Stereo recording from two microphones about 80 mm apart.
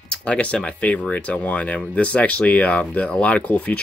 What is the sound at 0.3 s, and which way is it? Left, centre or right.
Speech, centre.